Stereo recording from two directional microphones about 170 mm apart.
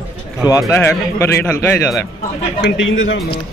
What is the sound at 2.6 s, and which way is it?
Speech, 90° left.